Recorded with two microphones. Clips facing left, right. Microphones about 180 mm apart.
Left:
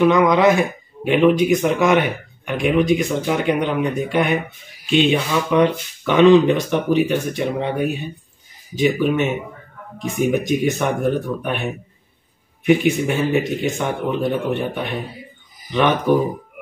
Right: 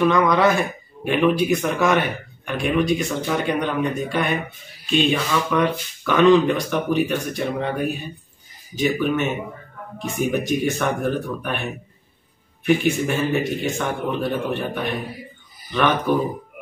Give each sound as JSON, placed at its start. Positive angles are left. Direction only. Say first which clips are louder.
{"t": 0.0, "sound": "a man's voice", "louder": "left 3 dB", "side_deg": 20}